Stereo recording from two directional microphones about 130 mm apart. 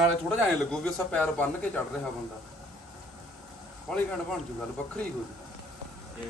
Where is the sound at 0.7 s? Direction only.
5° left (ahead or behind).